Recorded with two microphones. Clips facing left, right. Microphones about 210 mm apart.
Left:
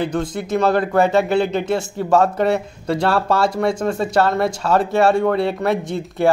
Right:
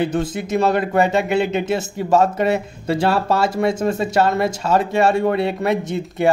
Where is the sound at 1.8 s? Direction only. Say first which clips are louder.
Left 1 dB; centre (ahead or behind).